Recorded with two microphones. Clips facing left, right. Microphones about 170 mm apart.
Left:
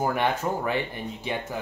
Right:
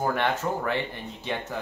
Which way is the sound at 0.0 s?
10° left (ahead or behind).